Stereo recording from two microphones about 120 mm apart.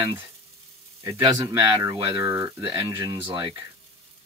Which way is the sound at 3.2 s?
45° right (ahead or behind).